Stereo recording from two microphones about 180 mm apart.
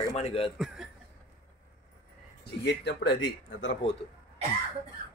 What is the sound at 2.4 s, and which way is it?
Speech, 70° left (ahead or behind).